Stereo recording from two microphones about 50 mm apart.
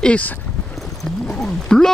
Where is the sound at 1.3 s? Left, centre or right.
Centre.